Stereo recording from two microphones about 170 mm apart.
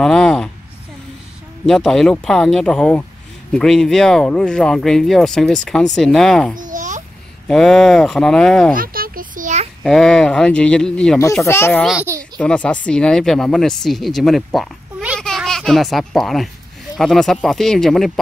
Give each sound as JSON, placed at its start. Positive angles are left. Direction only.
{"t": 0.0, "sound": "a sound", "side_deg": 5}
{"t": 1.7, "sound": "speech", "side_deg": 5}
{"t": 6.5, "sound": "babbling", "side_deg": -50}
{"t": 7.4, "sound": "speech", "side_deg": 0}
{"t": 8.7, "sound": "a sound", "side_deg": -60}
{"t": 9.8, "sound": "speech", "side_deg": 5}
{"t": 11.8, "sound": "speech", "side_deg": -5}
{"t": 12.2, "sound": "speech", "side_deg": 5}